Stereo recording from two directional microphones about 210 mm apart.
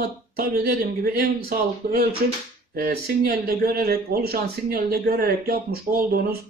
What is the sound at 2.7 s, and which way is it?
Speech, 45° right (ahead or behind).